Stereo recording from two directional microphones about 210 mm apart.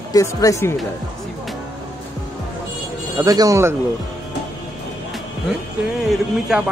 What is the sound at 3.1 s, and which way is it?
Speech, 15° right (ahead or behind).